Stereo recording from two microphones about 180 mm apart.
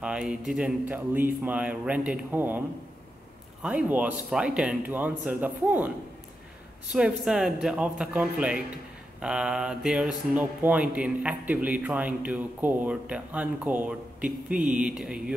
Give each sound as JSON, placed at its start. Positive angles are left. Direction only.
{"t": 0.0, "sound": "speech", "side_deg": -5}
{"t": 3.6, "sound": "speech", "side_deg": -5}
{"t": 6.9, "sound": "speech", "side_deg": -5}